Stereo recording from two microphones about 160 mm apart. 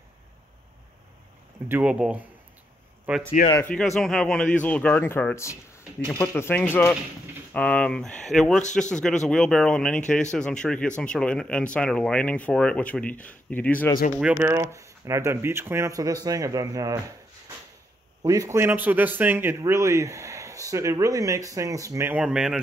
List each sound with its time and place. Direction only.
1.7 s speech: 5° right (ahead or behind)
3.6 s speech: 5° left (ahead or behind)
14.3 s a man's voice: 15° right (ahead or behind)
18.2 s a man's voice: 20° right (ahead or behind); by 22.6 s 5° right (ahead or behind)